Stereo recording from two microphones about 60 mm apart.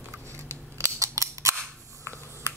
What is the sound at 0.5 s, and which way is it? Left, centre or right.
Scissors, right.